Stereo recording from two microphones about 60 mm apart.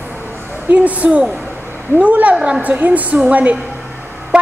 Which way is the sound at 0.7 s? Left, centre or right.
Right.